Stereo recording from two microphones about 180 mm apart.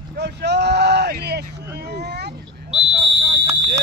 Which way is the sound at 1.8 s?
65° right (ahead or behind).